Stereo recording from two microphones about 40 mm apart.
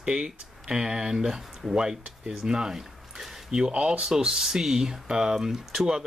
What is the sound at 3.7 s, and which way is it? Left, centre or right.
Speech, right.